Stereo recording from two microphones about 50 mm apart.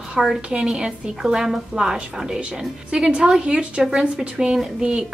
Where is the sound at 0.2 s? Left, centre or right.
Centre.